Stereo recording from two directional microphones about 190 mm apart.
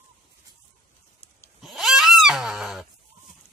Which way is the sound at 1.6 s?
Centre (ahead or behind).